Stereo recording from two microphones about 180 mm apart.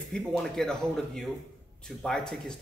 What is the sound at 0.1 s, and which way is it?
Speech, centre (ahead or behind).